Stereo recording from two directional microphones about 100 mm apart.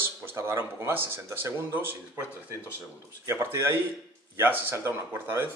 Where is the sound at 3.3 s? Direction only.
25° right (ahead or behind).